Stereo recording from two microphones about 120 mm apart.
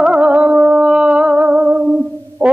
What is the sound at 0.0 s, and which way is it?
Music, 10° right (ahead or behind).